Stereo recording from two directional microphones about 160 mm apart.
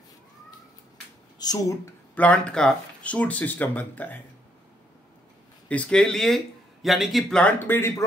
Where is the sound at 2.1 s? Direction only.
10° left (ahead or behind).